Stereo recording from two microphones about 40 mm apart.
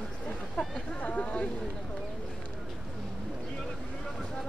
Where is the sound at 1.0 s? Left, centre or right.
Left.